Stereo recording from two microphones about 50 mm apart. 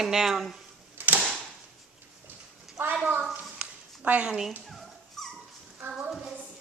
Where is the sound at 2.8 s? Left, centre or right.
Right.